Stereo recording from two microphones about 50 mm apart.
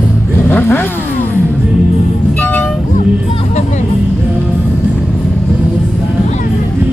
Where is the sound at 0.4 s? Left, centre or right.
Left.